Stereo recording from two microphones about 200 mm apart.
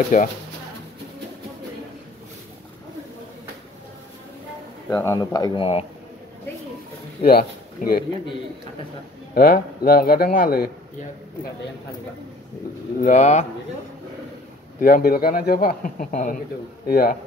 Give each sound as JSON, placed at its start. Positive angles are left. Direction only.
{"t": 0.1, "sound": "speech", "side_deg": 40}
{"t": 4.8, "sound": "speech", "side_deg": 15}
{"t": 7.2, "sound": "a man's voice", "side_deg": 50}
{"t": 9.3, "sound": "speech", "side_deg": 45}
{"t": 13.0, "sound": "speech", "side_deg": 35}
{"t": 14.8, "sound": "speech", "side_deg": 45}